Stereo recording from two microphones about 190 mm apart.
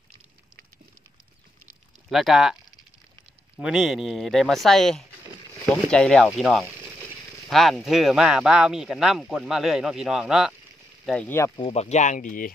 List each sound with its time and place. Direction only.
2.0 s speech: centre (ahead or behind)
3.5 s speech: 5° right (ahead or behind)
6.7 s a sound: 15° right (ahead or behind)
7.4 s speech: centre (ahead or behind)
11.1 s speech: 10° left (ahead or behind)
11.6 s speech: 35° left (ahead or behind)